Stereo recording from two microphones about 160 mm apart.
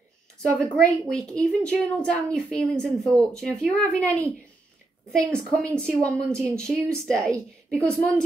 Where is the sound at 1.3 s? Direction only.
5° left (ahead or behind).